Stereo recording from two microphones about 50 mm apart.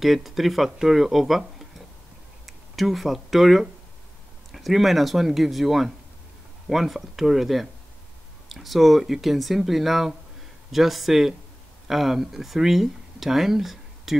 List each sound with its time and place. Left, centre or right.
0.0 s speech: centre